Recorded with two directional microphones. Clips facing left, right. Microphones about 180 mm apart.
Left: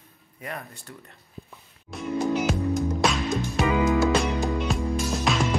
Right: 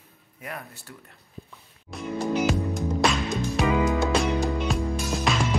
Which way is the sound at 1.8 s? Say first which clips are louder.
Left 2 dB; centre (ahead or behind).